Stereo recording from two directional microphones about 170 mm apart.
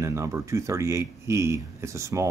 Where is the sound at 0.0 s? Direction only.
15° right (ahead or behind).